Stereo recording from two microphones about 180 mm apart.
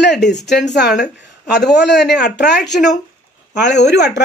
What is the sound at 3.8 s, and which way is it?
Speech, 65° left (ahead or behind).